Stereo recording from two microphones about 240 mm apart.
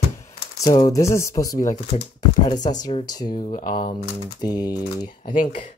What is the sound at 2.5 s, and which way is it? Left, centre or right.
Speech, left.